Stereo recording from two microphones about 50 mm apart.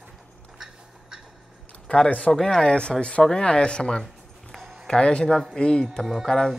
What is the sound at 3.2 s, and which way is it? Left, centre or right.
Speech, centre.